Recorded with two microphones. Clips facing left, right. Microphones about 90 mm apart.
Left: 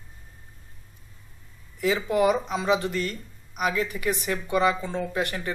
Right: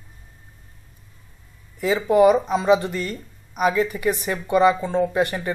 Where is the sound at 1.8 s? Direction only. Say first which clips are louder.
Right 6 dB; 25° right (ahead or behind).